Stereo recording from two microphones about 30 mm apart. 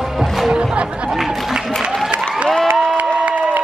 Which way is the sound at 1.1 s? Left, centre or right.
Centre.